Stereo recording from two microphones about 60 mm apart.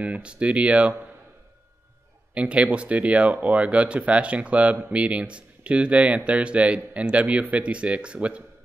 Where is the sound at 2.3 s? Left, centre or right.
Right.